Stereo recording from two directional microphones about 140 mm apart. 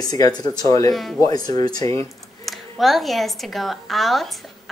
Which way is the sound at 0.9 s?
Centre (ahead or behind).